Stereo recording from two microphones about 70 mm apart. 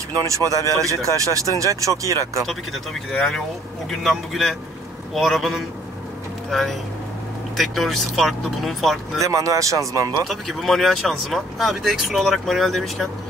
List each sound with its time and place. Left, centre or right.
0.3 s speech: right
2.4 s speech: centre
9.2 s speech: right
10.2 s speech: centre